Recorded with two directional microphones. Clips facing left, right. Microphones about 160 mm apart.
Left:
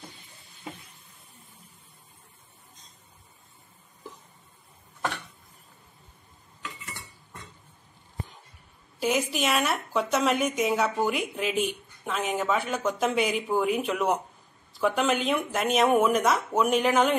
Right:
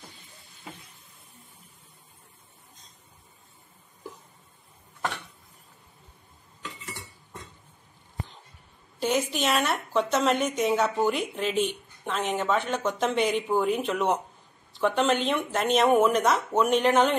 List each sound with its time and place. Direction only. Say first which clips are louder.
9.0 s a woman's voice: even; 5° left (ahead or behind)